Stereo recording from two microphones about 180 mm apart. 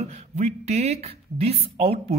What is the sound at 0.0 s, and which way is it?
Speech, 35° right (ahead or behind).